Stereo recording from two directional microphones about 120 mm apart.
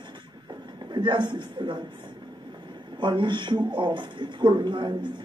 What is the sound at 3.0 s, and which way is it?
A man's voice, 40° right (ahead or behind).